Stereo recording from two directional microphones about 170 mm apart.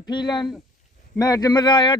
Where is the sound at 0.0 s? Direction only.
25° left (ahead or behind).